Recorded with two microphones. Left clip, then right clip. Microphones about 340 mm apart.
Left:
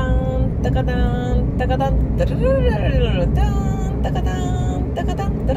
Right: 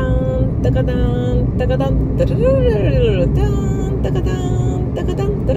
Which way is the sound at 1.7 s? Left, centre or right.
Centre.